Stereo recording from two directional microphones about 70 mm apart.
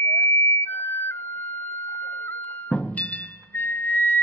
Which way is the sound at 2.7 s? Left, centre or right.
Centre.